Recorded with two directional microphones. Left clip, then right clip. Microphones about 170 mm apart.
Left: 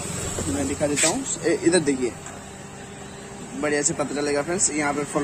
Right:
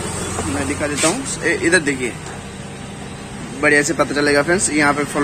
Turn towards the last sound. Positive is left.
turn(degrees=5)  # may be behind; listen again after turning